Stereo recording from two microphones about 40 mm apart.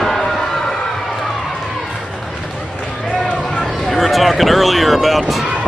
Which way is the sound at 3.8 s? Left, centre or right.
Centre.